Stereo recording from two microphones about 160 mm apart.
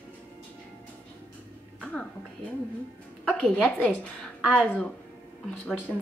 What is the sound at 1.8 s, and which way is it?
Music, 5° left (ahead or behind).